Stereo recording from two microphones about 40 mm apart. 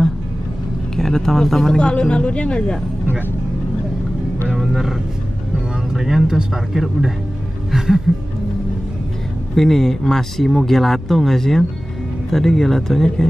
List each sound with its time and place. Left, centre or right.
0.9 s speech: centre
1.8 s speech: left
4.6 s vehicle: centre
5.9 s speech: centre
9.6 s speech: centre